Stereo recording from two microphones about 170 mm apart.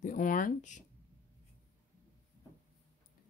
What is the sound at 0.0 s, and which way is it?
Speech, 50° left (ahead or behind).